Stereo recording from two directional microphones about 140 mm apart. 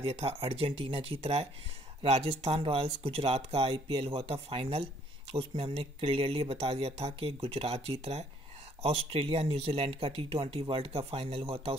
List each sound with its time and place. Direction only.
0.0 s speech: 45° right (ahead or behind)